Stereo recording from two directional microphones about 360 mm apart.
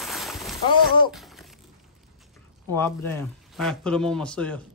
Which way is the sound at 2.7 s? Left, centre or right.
Centre.